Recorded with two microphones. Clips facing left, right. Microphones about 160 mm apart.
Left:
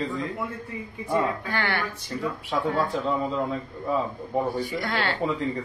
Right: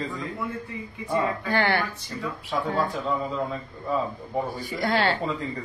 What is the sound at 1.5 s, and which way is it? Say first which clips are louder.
Speech: right 4 dB; 30° right (ahead or behind).